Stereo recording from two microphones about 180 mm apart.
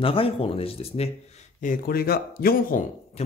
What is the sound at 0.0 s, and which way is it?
Speech, 30° left (ahead or behind).